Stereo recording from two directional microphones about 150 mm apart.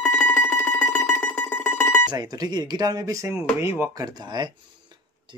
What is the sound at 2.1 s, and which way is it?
Speech, 25° right (ahead or behind).